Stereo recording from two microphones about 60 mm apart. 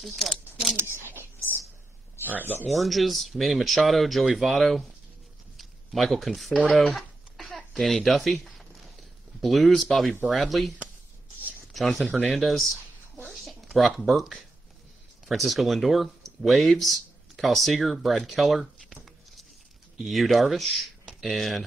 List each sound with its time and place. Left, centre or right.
0.0 s speech: centre
0.7 s speech: right
2.7 s speech: centre
6.7 s a sound: centre
9.4 s speech: centre
11.7 s speech: centre
13.7 s speech: centre
21.0 s a sound: centre
21.3 s speech: centre